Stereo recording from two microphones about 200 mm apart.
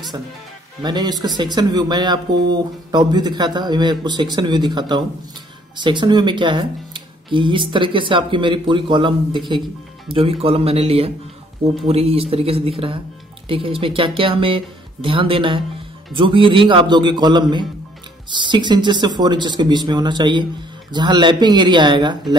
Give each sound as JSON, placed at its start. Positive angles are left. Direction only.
{"t": 0.8, "sound": "speech", "side_deg": -20}